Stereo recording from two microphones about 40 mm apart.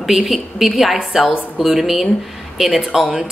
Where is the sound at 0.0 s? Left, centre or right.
Centre.